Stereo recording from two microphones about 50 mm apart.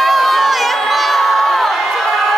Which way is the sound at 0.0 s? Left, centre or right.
Centre.